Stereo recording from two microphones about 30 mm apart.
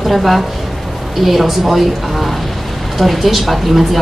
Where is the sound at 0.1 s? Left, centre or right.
Centre.